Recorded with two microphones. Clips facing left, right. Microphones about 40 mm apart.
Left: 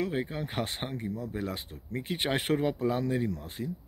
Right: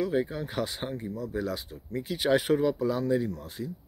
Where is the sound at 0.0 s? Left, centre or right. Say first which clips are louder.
Right 3 dB; left.